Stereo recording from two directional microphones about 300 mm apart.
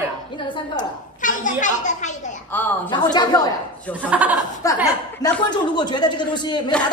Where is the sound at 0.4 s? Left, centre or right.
Left.